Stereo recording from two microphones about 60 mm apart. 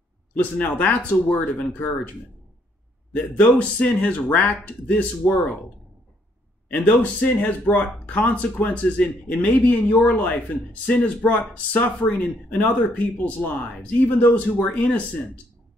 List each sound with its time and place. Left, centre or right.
0.4 s speech: left
3.3 s speech: left
6.7 s speech: left